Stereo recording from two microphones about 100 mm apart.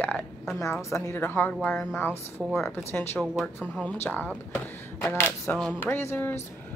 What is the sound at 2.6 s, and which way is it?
Speech, 20° left (ahead or behind).